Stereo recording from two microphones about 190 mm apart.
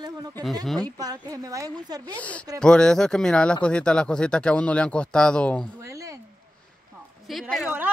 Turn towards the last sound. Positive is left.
turn(degrees=0)  # may be behind; listen again after turning